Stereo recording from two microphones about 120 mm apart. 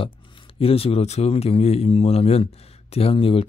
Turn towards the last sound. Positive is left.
turn(degrees=50)  # may be behind; listen again after turning